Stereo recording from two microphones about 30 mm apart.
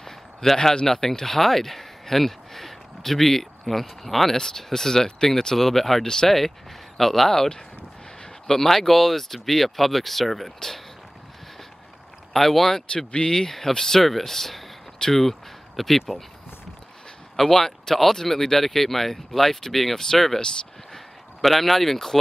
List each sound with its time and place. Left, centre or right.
0.0 s a sound: centre
0.8 s speech: centre
4.4 s speech: centre
6.0 s speech: centre
7.0 s speech: centre
8.5 s speech: centre
12.3 s speech: centre
12.9 s speech: left
13.3 s speech: centre
17.5 s speech: centre
21.4 s speech: centre